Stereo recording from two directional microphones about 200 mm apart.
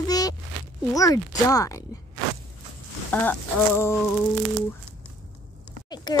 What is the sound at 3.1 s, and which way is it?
Speech, 10° left (ahead or behind).